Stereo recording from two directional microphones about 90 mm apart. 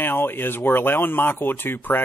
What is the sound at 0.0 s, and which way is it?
A man's voice, 25° left (ahead or behind).